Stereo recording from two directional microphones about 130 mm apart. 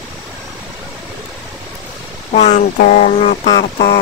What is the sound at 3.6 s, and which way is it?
Music, 90° left.